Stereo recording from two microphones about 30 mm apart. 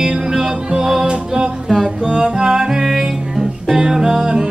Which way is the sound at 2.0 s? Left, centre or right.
Right.